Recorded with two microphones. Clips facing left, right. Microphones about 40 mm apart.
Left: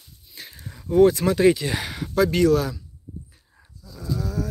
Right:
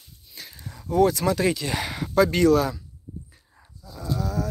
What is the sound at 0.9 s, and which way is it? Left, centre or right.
Speech, left.